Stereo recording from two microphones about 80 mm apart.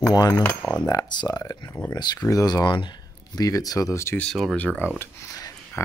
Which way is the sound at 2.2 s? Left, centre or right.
Left.